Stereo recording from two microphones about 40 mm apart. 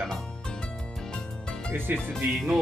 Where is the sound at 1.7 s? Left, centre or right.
Right.